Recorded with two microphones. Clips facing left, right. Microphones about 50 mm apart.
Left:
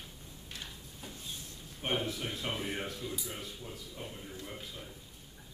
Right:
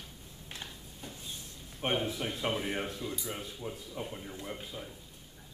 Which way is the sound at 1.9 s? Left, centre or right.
Centre.